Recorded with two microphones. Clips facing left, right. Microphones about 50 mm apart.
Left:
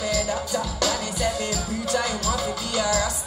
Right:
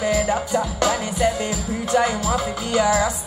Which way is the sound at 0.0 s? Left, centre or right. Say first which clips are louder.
Right 5 dB; right.